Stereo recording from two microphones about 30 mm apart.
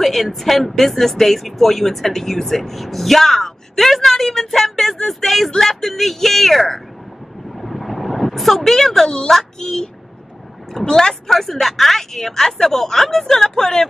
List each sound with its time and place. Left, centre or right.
0.0 s a woman's voice: centre
7.5 s a sound: centre
9.3 s a woman's voice: centre
10.9 s speech: centre
11.2 s a woman's voice: centre